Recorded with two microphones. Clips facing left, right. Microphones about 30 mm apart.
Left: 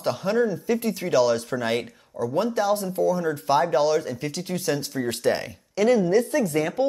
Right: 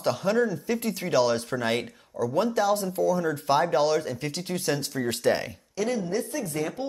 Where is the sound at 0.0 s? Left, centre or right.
Right.